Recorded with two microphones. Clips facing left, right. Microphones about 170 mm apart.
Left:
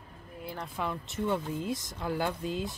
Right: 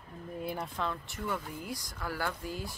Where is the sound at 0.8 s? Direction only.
20° left (ahead or behind).